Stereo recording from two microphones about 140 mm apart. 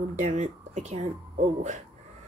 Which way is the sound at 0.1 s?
60° right (ahead or behind).